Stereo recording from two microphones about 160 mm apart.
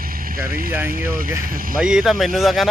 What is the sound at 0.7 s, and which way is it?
Speech, 15° right (ahead or behind).